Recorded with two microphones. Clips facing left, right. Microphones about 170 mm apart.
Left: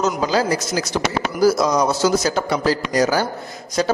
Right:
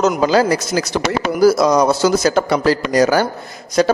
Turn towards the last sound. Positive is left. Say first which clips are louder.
# right 5 dB
turn(degrees=-70)  # may be behind; listen again after turning